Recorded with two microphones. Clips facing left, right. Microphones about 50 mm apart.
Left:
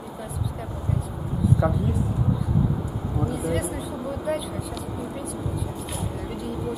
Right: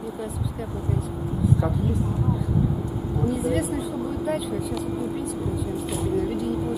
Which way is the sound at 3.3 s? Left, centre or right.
Centre.